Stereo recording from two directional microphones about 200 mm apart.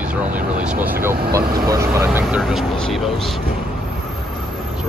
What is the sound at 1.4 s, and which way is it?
Speech, 50° right (ahead or behind).